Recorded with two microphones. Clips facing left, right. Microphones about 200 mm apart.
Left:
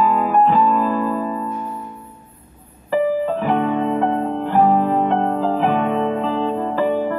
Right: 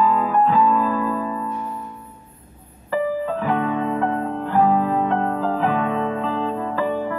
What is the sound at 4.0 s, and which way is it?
Music, 20° left (ahead or behind).